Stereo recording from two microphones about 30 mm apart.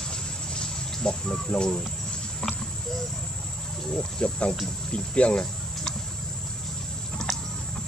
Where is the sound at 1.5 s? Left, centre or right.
Left.